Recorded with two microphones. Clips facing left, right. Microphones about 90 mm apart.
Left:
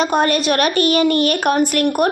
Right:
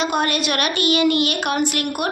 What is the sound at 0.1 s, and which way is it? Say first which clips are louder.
A woman's voice: left 5 dB; 40° left (ahead or behind).